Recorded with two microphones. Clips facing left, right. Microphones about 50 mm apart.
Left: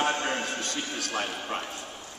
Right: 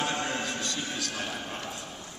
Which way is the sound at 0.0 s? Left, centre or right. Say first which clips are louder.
Left 3 dB; left.